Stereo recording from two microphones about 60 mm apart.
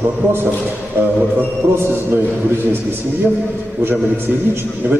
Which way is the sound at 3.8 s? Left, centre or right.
Right.